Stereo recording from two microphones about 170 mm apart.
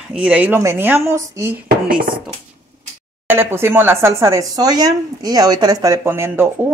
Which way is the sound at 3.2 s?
15° right (ahead or behind).